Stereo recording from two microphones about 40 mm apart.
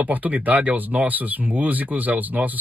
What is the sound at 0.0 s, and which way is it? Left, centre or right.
Speech, right.